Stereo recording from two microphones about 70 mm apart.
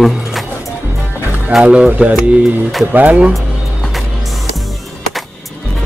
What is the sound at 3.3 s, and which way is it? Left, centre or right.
Music, centre.